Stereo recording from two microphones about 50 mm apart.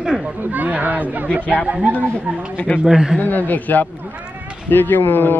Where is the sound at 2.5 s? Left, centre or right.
Left.